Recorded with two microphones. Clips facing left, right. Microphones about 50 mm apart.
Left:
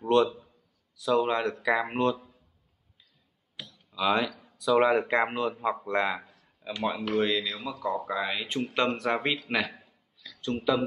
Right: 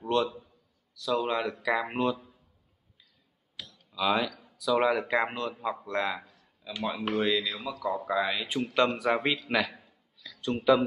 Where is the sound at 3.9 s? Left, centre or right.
Centre.